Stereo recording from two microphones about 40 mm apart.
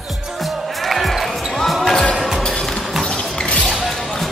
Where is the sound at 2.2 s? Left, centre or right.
Centre.